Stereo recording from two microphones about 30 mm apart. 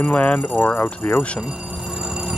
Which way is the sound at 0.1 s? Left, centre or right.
Left.